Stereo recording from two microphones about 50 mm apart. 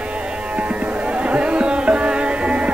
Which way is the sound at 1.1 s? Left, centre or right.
Right.